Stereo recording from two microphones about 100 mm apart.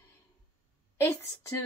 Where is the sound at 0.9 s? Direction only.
25° left (ahead or behind).